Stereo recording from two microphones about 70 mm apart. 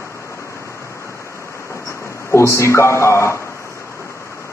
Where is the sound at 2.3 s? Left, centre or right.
Left.